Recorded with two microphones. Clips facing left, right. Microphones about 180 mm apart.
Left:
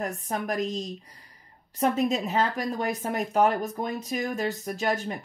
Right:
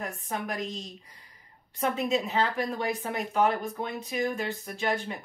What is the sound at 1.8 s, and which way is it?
Speech, 40° left (ahead or behind).